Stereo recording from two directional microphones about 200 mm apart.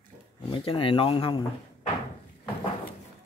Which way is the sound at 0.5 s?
25° left (ahead or behind).